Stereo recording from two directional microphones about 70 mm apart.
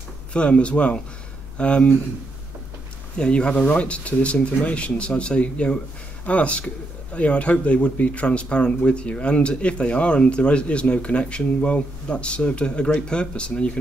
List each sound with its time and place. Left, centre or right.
0.3 s speech: centre
3.2 s speech: centre